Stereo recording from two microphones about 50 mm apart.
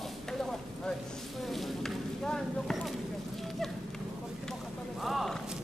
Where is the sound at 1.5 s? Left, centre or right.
Centre.